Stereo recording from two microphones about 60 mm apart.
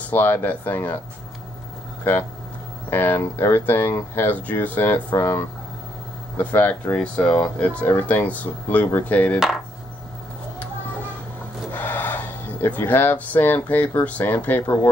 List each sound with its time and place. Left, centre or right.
0.0 s speech: left
2.1 s speech: left
4.4 s speech: left
7.0 s speech: centre
7.8 s speech: left
11.7 s speech: left